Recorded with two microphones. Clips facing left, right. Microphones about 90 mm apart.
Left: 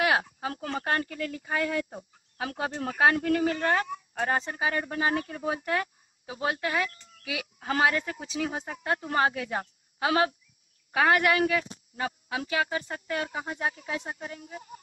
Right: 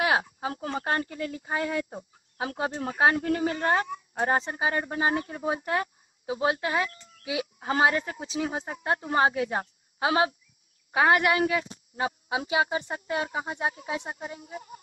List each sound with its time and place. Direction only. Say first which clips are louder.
0.0 s speech: even; 25° right (ahead or behind)